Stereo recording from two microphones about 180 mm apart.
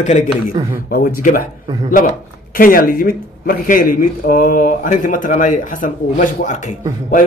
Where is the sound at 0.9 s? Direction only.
55° left (ahead or behind).